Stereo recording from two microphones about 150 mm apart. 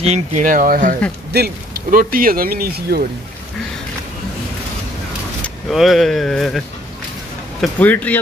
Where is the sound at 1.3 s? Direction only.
80° right.